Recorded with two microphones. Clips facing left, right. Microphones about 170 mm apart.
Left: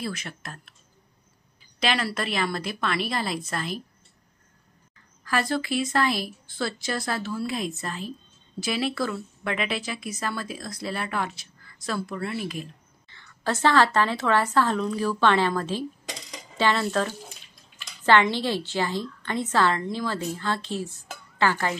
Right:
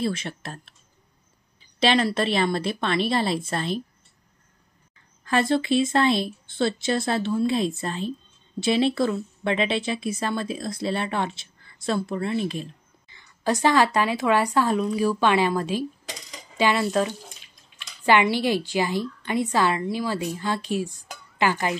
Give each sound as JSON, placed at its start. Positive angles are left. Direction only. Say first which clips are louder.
{"t": 0.0, "sound": "speech", "louder": "right 6 dB", "side_deg": -30}
{"t": 1.8, "sound": "speech", "louder": "right 6 dB", "side_deg": -30}
{"t": 5.2, "sound": "speech", "louder": "right 4 dB", "side_deg": -25}
{"t": 13.1, "sound": "a woman's voice", "louder": "right 4 dB", "side_deg": -15}
{"t": 18.0, "sound": "a woman's voice", "louder": "right 1 dB", "side_deg": -10}